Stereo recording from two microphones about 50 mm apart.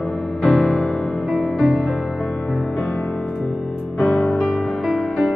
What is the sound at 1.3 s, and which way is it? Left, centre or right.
Music, centre.